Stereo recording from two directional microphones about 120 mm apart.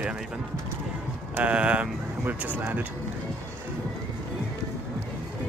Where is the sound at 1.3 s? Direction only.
10° right (ahead or behind).